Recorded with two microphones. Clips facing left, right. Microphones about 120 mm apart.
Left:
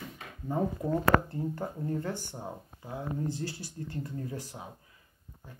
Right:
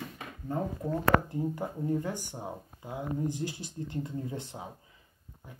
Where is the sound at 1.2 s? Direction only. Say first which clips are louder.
Right 2 dB; 15° right (ahead or behind).